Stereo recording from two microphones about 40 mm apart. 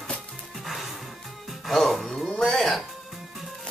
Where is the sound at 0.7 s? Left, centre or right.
Centre.